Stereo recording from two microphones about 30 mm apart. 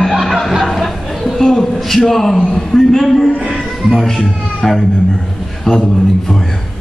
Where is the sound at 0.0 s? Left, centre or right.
Centre.